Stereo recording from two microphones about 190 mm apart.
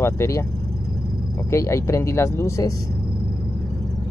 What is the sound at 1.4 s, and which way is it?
Speech, 15° left (ahead or behind).